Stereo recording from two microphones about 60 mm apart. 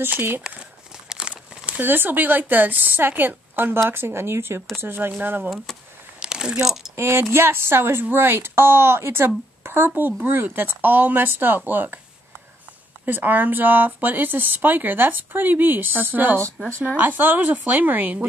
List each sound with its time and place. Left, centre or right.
0.4 s crumpling: centre
1.8 s speech: right
6.1 s a sound: centre
7.0 s speech: right
13.0 s a woman's voice: right